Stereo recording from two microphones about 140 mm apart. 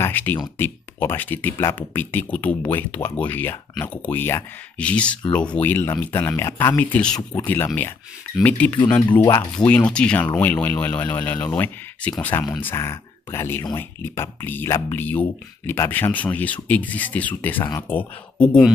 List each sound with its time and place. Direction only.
0.0 s speech: 10° left (ahead or behind)
9.2 s speech: 20° left (ahead or behind)
9.6 s speech: 10° left (ahead or behind)